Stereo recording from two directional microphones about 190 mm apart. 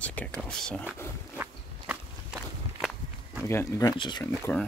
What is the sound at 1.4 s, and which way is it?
Walk, 5° right (ahead or behind).